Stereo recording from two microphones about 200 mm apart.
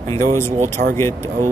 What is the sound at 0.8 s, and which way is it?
Speech, 55° right (ahead or behind).